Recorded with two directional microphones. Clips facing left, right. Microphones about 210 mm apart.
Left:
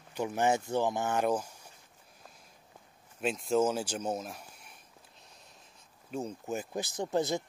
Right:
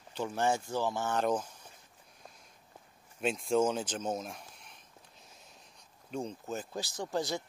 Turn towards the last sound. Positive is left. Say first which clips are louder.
# left 4 dB
turn(degrees=20)  # may be behind; listen again after turning